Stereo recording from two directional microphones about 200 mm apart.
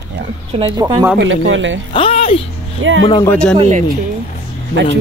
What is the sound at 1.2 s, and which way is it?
Speech, 70° right (ahead or behind).